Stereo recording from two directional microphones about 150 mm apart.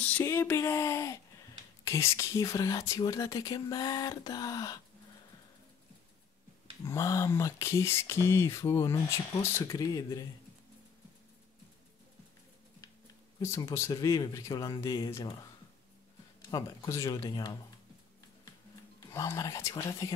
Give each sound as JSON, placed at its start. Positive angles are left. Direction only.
{"t": 0.0, "sound": "speech", "side_deg": 15}
{"t": 6.8, "sound": "speech", "side_deg": 20}
{"t": 13.6, "sound": "speech", "side_deg": 20}
{"t": 18.9, "sound": "speech", "side_deg": 20}